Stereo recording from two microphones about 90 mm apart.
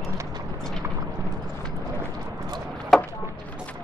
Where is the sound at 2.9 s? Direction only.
5° left (ahead or behind).